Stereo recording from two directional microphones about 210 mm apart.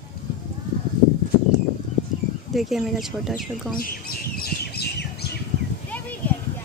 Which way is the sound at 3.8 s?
45° left (ahead or behind).